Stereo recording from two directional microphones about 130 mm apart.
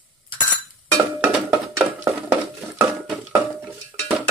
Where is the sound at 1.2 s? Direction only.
15° right (ahead or behind).